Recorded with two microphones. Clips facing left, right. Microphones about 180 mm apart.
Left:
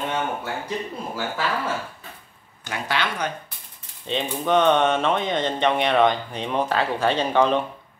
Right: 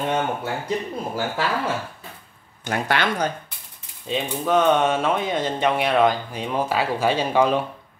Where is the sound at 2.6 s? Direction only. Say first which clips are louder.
Right 4 dB; 50° right (ahead or behind).